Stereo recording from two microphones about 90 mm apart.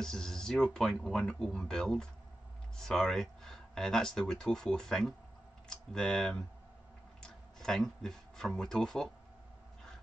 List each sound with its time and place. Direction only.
0.0 s speech: 5° left (ahead or behind)